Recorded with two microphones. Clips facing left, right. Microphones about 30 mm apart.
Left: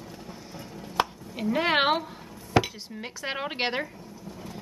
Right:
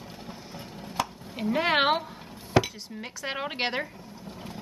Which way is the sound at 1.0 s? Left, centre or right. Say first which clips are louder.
Left 4 dB; left.